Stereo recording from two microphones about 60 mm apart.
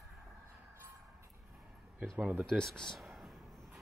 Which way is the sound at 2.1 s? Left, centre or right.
Right.